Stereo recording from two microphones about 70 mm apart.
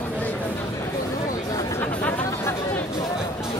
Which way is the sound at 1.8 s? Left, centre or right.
Left.